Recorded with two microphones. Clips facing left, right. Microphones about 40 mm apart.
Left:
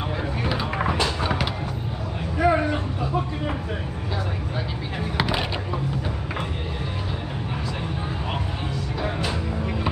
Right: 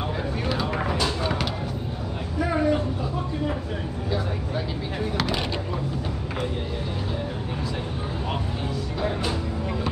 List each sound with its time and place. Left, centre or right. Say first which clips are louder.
0.5 s a sound: left 2 dB; centre
1.0 s music: left 1 dB; centre
2.5 s vehicle: even; left
5.1 s vehicle: left 3 dB; centre